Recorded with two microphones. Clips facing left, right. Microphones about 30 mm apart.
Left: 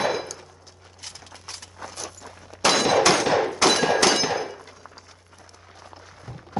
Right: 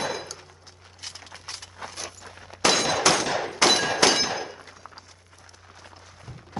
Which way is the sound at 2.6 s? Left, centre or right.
Centre.